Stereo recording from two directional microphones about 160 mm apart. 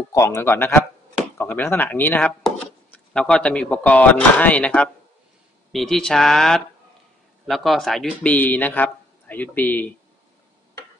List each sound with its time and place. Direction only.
0.1 s speech: 20° left (ahead or behind)